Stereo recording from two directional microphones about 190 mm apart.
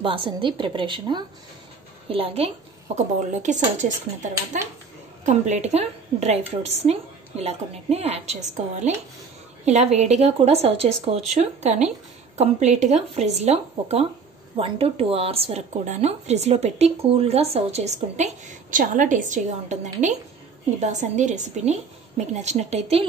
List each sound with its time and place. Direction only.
0.0 s a woman's voice: 30° right (ahead or behind)